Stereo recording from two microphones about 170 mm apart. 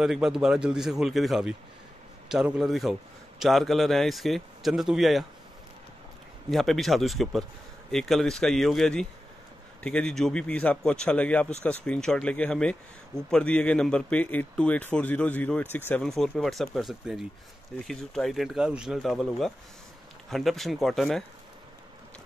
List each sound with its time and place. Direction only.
0.0 s a man's voice: centre (ahead or behind)
6.5 s a man's voice: centre (ahead or behind)